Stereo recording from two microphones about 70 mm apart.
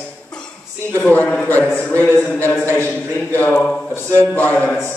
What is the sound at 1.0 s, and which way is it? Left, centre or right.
Speech, left.